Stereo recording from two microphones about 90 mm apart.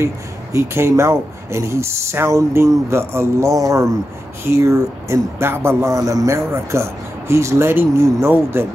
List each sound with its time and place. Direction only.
0.0 s speech: 35° right (ahead or behind)